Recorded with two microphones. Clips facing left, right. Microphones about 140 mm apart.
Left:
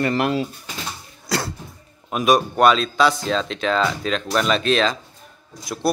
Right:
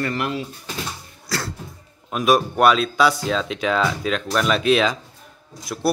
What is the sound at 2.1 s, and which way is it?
Speech, centre (ahead or behind).